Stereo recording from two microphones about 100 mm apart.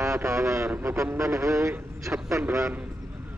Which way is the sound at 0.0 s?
30° right (ahead or behind).